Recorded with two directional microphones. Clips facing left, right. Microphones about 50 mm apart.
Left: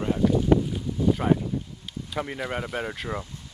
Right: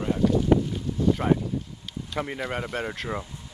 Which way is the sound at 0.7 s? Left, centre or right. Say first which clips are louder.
Even; centre.